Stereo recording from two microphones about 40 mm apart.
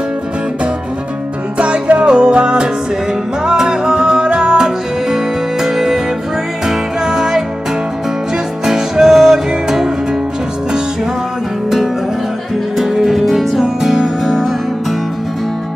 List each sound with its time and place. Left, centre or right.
1.6 s music: right; by 7.4 s centre
8.6 s music: centre
12.7 s music: centre